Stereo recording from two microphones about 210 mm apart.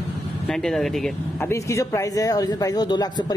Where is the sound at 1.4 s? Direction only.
15° left (ahead or behind).